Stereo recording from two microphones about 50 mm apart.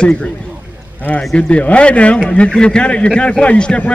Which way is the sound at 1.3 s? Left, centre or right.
Left.